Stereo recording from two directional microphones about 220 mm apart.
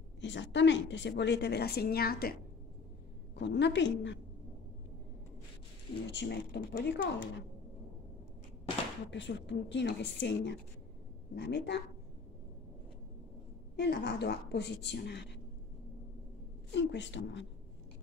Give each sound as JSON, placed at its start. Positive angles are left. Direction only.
{"t": 0.2, "sound": "a woman's voice", "side_deg": 55}
{"t": 3.3, "sound": "a woman's voice", "side_deg": 50}
{"t": 6.1, "sound": "a woman's voice", "side_deg": 50}
{"t": 9.1, "sound": "a woman's voice", "side_deg": 55}
{"t": 13.7, "sound": "a woman's voice", "side_deg": 50}
{"t": 16.7, "sound": "a woman's voice", "side_deg": 55}